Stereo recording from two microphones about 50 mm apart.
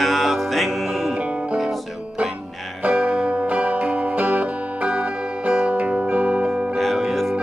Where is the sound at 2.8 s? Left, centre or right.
Right.